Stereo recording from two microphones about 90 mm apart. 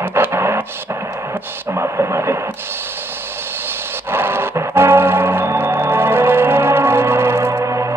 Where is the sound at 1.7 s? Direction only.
30° right (ahead or behind).